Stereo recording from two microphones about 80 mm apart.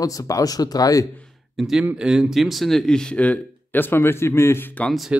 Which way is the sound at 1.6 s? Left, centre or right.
Centre.